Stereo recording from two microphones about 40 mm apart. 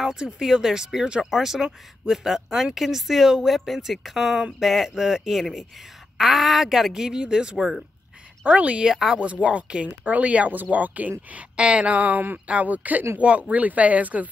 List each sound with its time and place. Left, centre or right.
0.0 s a woman's voice: centre
6.9 s speech: centre
7.5 s speech: centre
8.5 s speech: right
8.8 s speech: centre
9.2 s speech: right
10.5 s speech: right
11.5 s speech: right
13.2 s speech: right